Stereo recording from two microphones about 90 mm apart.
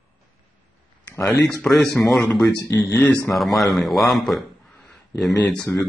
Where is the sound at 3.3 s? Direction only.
Centre (ahead or behind).